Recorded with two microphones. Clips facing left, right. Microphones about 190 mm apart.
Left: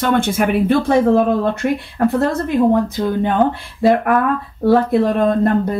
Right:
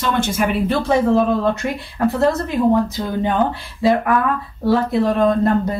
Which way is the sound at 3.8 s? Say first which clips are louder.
Left 2 dB; 55° left (ahead or behind).